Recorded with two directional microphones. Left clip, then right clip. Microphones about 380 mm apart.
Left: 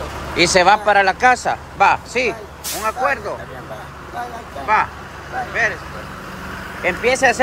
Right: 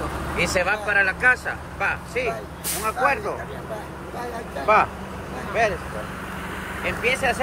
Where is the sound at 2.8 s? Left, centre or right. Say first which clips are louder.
Left 2 dB; centre.